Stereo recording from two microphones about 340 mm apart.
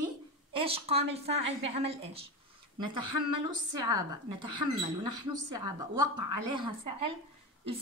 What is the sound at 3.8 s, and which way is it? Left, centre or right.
Speech, centre.